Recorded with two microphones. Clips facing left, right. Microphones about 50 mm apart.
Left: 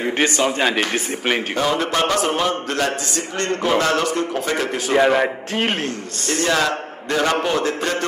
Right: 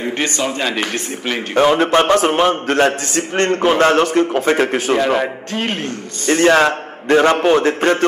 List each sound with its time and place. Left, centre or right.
0.4 s a man's voice: centre
1.5 s a man's voice: right
5.1 s a man's voice: centre
6.2 s a man's voice: right